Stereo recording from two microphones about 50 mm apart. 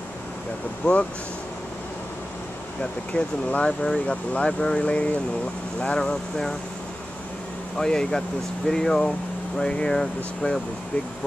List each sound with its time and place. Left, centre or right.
0.8 s speech: left
2.8 s speech: centre
5.8 s speech: centre
7.7 s speech: centre